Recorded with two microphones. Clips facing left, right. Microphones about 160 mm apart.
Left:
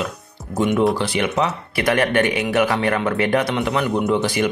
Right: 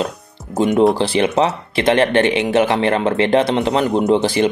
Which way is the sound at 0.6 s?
35° right (ahead or behind).